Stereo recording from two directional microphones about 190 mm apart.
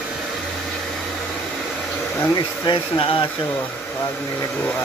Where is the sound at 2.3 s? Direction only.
25° left (ahead or behind).